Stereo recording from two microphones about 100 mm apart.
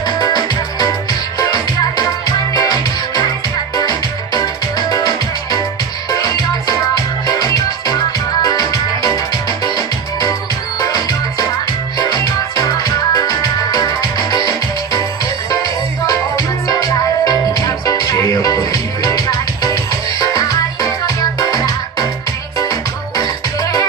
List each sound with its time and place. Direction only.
0.0 s music: 45° left (ahead or behind)
10.8 s music: 40° left (ahead or behind)